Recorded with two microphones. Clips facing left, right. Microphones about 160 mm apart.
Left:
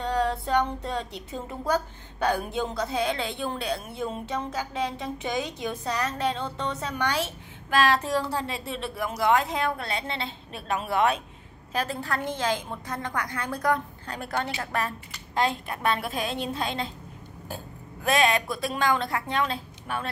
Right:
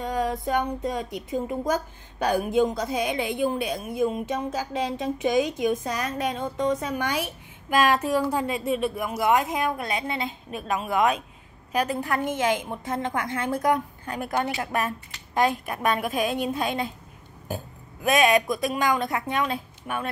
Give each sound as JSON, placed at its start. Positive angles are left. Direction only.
{"t": 0.0, "sound": "a woman's voice", "side_deg": -10}
{"t": 18.0, "sound": "a woman's voice", "side_deg": -20}